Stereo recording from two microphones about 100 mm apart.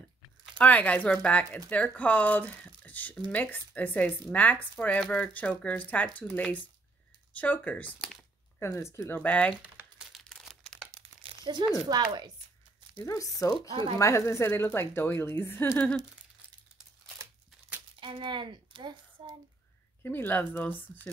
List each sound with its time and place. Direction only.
0.6 s speech: 15° left (ahead or behind)
8.5 s a woman's voice: 25° left (ahead or behind)
9.2 s speech: 15° left (ahead or behind)
9.6 s crumpling: 15° right (ahead or behind)
10.1 s crumpling: centre (ahead or behind)
11.0 s crumpling: 60° right (ahead or behind)
11.9 s speech: 45° right (ahead or behind)
12.9 s speech: 35° left (ahead or behind)
13.6 s speech: 55° right (ahead or behind)
13.9 s a woman's voice: 30° left (ahead or behind)
18.0 s speech: 55° right (ahead or behind)
20.0 s a woman's voice: 20° left (ahead or behind)